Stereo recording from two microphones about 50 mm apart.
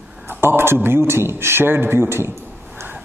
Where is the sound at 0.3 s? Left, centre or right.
Right.